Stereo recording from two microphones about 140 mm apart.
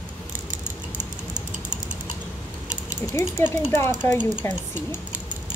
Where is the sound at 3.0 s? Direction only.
15° left (ahead or behind).